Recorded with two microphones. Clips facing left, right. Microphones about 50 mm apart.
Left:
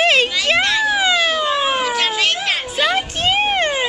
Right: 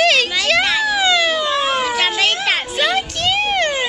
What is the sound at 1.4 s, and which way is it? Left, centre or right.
Cat, centre.